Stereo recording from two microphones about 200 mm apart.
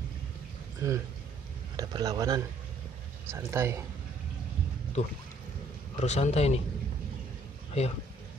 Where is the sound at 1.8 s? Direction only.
20° right (ahead or behind).